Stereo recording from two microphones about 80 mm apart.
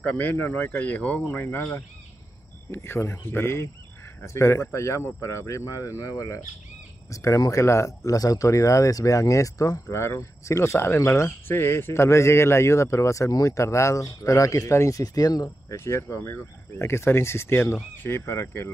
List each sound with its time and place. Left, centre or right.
0.0 s speech: centre; by 15.5 s left
15.7 s speech: left